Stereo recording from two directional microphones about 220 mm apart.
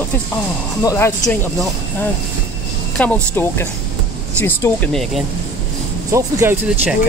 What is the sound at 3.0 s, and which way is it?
Speech, 10° left (ahead or behind).